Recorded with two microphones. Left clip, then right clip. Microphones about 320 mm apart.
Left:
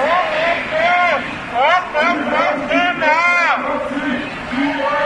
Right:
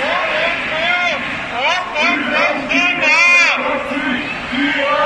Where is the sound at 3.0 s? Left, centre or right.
Left.